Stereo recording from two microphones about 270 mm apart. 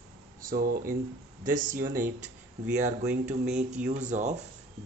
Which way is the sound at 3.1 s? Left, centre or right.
Centre.